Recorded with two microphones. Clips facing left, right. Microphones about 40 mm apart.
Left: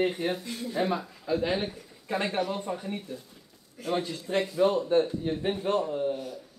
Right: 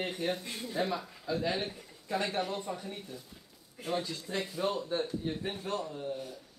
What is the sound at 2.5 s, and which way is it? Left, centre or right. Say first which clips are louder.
Speech: left 5 dB; left.